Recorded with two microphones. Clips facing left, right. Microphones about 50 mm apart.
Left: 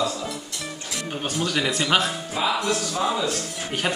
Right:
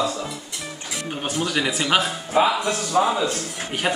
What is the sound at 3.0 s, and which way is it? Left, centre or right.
Speech, centre.